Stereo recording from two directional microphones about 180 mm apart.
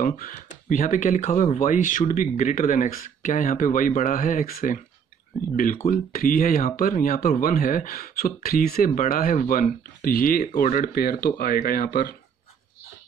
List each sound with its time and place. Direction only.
0.0 s speech: 50° left (ahead or behind)
5.9 s speech: 50° left (ahead or behind)